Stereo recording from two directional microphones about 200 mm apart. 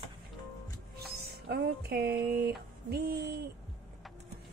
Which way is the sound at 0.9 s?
50° right (ahead or behind).